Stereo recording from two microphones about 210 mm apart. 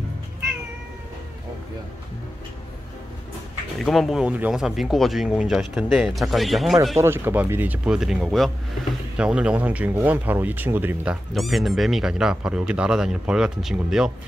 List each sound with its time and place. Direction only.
3.8 s speech: centre (ahead or behind)
7.0 s speech: 10° right (ahead or behind)